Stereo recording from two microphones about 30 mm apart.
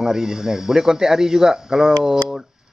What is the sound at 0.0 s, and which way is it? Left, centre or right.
A man's voice, centre.